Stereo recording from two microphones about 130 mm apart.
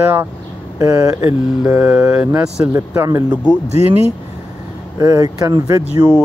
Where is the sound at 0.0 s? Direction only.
20° right (ahead or behind).